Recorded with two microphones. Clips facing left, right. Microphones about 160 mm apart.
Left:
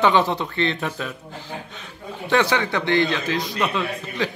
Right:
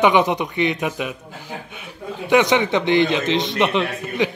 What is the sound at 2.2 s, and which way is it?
A man's voice, 15° right (ahead or behind).